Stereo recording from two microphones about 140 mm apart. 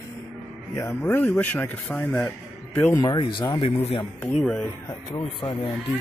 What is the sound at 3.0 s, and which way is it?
Speech, 30° left (ahead or behind).